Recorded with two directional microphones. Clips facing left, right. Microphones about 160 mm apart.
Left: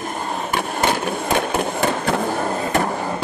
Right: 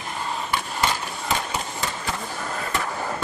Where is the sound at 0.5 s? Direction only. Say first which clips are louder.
Left 6 dB; 60° left (ahead or behind).